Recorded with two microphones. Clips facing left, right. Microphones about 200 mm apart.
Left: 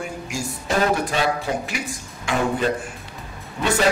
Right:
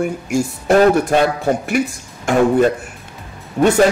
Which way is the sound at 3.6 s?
55° right (ahead or behind).